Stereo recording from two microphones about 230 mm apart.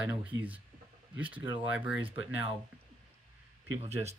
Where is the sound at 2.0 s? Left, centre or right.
Right.